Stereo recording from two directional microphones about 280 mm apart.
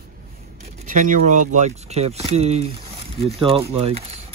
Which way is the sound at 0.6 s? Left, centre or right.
Right.